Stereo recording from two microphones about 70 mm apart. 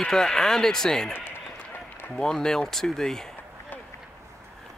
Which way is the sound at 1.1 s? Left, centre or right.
Left.